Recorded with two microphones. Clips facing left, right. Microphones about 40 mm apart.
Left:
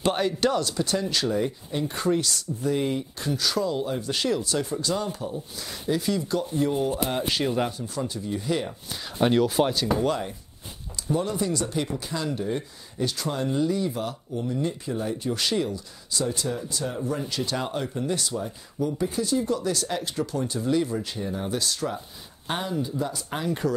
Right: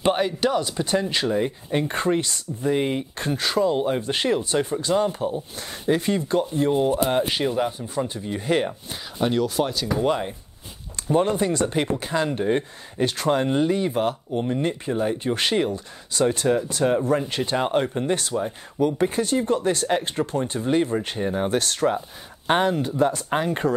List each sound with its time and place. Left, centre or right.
0.0 s speech: centre
1.7 s speech: right
7.2 s speech: right
9.2 s speech: centre
10.0 s speech: right
11.0 s speech: right